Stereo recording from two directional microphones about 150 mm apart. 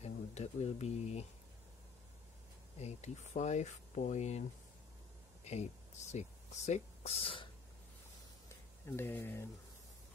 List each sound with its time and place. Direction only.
0.0 s speech: 45° left (ahead or behind)
2.8 s speech: 50° left (ahead or behind)
5.4 s speech: 45° left (ahead or behind)
8.9 s speech: 15° left (ahead or behind)